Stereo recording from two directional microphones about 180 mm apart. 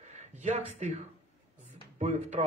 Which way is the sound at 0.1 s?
40° right (ahead or behind).